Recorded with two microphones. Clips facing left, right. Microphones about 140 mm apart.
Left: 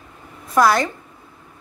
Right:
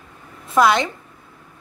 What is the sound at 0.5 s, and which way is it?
Speech, 20° right (ahead or behind).